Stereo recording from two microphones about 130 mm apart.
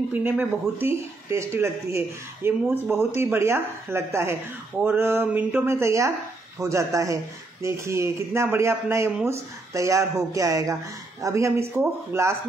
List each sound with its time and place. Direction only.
0.1 s speech: 15° right (ahead or behind)